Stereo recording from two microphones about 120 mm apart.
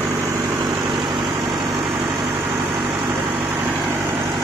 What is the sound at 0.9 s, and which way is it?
Vehicle, 40° right (ahead or behind).